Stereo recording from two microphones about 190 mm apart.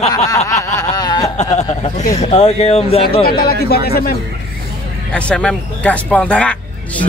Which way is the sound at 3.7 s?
55° left (ahead or behind).